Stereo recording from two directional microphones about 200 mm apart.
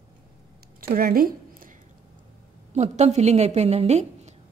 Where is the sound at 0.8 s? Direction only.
45° right (ahead or behind).